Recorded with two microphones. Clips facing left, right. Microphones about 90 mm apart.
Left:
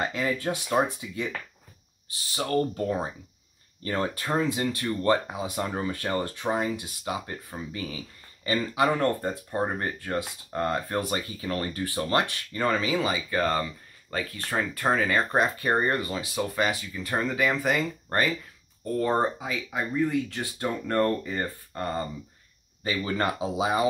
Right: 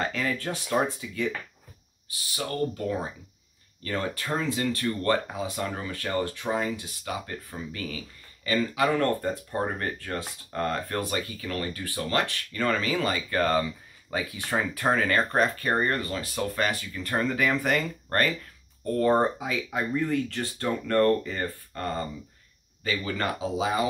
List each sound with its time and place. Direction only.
0.0 s speech: 20° left (ahead or behind)
2.3 s speech: 30° left (ahead or behind)
12.8 s speech: 5° left (ahead or behind)
16.2 s speech: 5° left (ahead or behind); by 23.9 s 25° left (ahead or behind)